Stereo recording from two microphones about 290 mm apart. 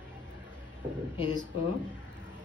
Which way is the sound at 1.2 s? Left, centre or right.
Centre.